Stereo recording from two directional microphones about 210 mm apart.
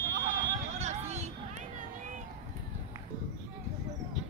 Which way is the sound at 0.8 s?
35° right (ahead or behind).